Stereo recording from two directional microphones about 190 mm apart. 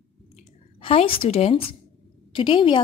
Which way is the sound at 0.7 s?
30° left (ahead or behind).